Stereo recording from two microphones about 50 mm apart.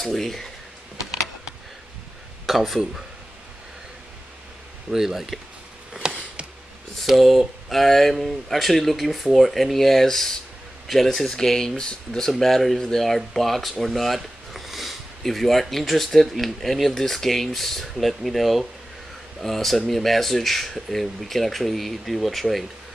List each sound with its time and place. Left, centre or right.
0.0 s speech: centre
2.4 s speech: centre
4.9 s speech: centre
6.0 s a sound: centre
7.0 s speech: centre